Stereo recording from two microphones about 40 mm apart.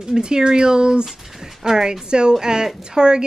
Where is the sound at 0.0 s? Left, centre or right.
Centre.